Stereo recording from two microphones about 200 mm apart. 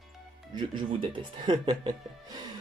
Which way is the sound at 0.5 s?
20° right (ahead or behind).